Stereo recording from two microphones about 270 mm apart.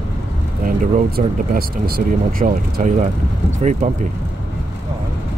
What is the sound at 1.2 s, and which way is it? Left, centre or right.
Speech, right.